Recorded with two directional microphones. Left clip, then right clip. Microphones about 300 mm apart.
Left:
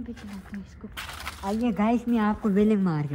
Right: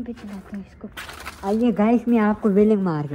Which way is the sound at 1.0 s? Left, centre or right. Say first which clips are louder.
Right 4 dB; left.